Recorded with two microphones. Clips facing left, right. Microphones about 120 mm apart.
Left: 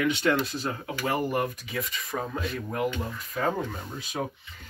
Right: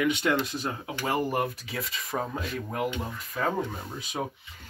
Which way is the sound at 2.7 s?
20° right (ahead or behind).